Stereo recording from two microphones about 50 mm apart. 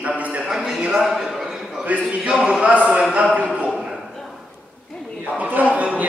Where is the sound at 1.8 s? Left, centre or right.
Right.